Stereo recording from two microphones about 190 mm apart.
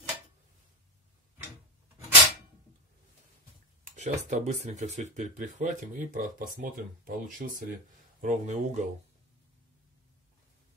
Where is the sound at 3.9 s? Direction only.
40° right (ahead or behind).